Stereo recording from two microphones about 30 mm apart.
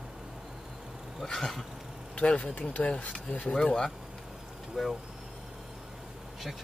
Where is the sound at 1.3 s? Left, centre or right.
Centre.